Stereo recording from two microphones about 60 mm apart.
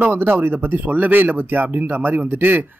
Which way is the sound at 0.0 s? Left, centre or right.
Right.